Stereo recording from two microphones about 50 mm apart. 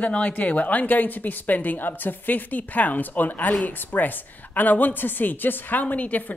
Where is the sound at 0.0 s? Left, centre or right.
Left.